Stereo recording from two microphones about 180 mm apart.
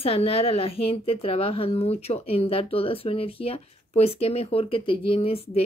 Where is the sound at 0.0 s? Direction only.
35° left (ahead or behind).